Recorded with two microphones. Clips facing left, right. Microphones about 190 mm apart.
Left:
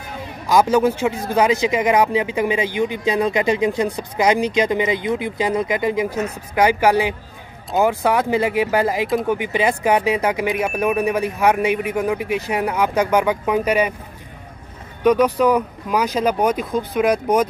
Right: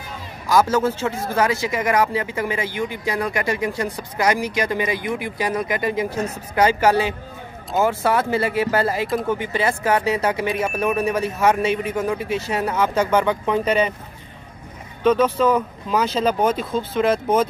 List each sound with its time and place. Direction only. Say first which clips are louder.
0.5 s a man's voice: left 3 dB; 15° left (ahead or behind)
15.0 s a man's voice: left 2 dB; 15° left (ahead or behind)